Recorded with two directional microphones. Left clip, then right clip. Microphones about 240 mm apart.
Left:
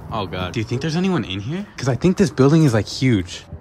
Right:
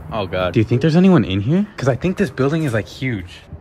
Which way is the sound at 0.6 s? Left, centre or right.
Centre.